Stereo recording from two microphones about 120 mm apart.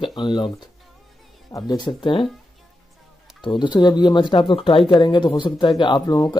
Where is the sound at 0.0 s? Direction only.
40° left (ahead or behind).